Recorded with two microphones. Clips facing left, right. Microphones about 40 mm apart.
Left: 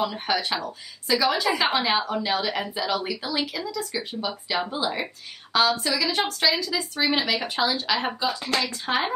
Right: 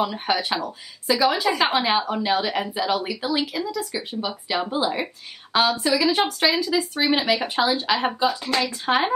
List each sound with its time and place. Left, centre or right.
0.0 s speech: centre